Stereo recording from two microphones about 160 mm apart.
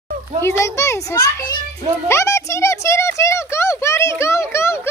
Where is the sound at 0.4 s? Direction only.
15° left (ahead or behind).